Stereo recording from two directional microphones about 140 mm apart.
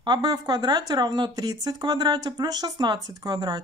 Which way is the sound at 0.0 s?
30° right (ahead or behind).